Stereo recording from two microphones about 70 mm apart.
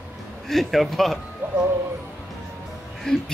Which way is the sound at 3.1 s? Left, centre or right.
Centre.